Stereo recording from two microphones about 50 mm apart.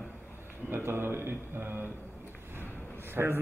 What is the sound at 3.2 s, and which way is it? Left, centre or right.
Speech, right.